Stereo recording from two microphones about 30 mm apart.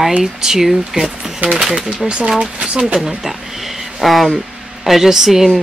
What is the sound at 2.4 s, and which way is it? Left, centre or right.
Speech, right.